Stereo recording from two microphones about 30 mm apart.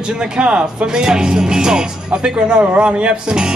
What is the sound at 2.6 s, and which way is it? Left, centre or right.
Speech, right.